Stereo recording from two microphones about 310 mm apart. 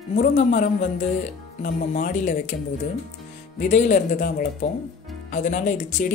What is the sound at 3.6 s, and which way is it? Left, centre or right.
Speech, left.